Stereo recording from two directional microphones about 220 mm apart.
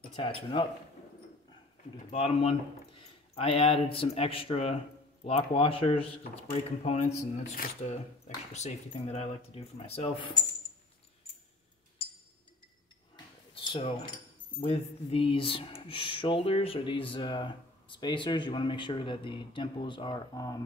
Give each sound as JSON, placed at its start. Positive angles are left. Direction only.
{"t": 0.1, "sound": "speech", "side_deg": 25}
{"t": 2.0, "sound": "speech", "side_deg": 25}
{"t": 13.1, "sound": "a sound", "side_deg": 20}
{"t": 14.6, "sound": "speech", "side_deg": 25}